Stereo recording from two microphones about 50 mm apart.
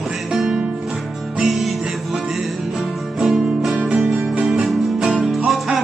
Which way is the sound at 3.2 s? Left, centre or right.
Centre.